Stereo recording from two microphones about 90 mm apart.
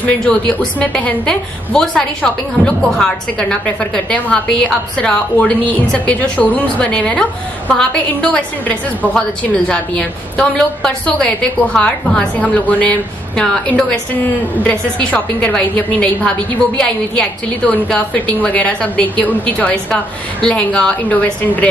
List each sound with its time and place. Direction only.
0.0 s a woman's voice: 10° left (ahead or behind)